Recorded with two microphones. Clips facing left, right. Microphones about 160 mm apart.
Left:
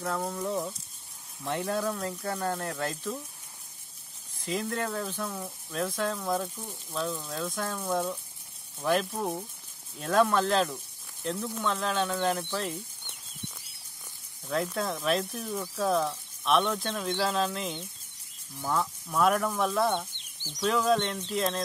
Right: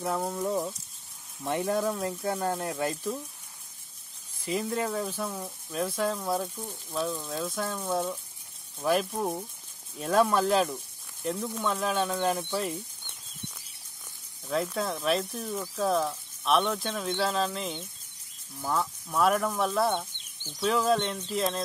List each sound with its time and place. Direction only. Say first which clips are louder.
0.0 s speech: right 2 dB; 20° right (ahead or behind)
4.5 s speech: right 2 dB; 5° right (ahead or behind)
14.5 s speech: right 1 dB; centre (ahead or behind)